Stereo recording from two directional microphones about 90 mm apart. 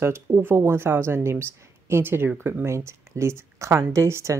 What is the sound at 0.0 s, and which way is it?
A woman's voice, 30° right (ahead or behind).